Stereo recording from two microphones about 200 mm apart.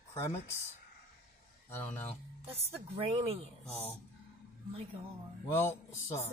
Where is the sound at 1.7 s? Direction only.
10° left (ahead or behind).